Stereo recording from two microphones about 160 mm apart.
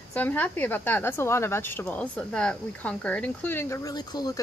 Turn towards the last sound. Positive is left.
turn(degrees=25)  # may be behind; listen again after turning